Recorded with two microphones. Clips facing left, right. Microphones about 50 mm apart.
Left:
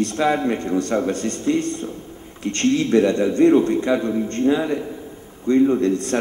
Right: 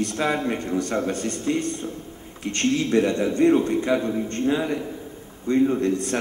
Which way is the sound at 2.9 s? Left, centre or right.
Centre.